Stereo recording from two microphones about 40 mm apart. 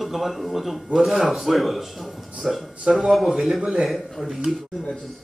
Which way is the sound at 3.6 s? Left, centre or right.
Centre.